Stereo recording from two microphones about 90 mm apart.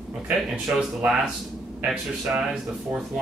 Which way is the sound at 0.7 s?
15° right (ahead or behind).